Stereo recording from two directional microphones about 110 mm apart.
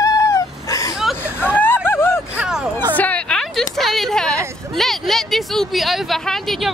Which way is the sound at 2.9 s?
10° left (ahead or behind).